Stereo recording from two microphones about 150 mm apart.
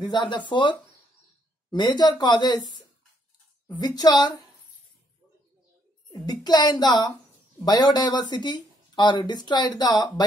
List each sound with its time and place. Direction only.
0.0 s speech: 30° left (ahead or behind)
3.6 s speech: 30° left (ahead or behind)
6.1 s speech: 30° left (ahead or behind)